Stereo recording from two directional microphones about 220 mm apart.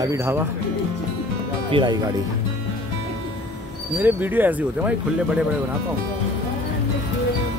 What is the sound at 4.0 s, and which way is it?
Speech, 10° right (ahead or behind).